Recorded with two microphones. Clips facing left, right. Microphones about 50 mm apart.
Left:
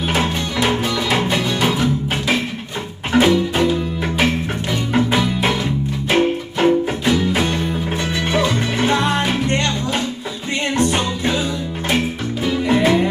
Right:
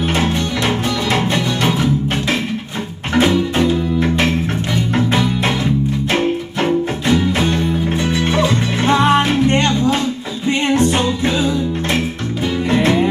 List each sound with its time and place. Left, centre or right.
0.1 s music: centre
3.2 s music: centre
9.5 s music: right
12.6 s music: centre